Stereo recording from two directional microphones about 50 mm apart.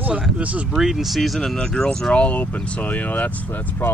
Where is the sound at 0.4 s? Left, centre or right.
Right.